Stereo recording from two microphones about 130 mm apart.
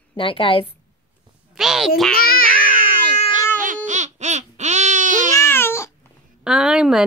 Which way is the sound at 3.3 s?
85° right.